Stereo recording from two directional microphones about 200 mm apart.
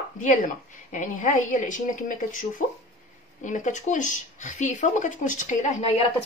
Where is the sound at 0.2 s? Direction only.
40° left (ahead or behind).